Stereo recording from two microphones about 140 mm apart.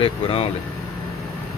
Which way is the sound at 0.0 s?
45° left (ahead or behind).